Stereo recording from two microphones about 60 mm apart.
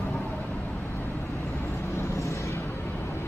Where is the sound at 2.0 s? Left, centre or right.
Left.